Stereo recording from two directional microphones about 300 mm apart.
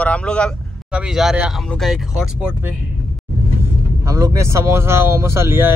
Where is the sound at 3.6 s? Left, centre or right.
Centre.